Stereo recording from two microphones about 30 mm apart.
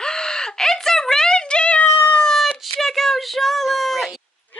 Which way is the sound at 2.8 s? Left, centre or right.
Centre.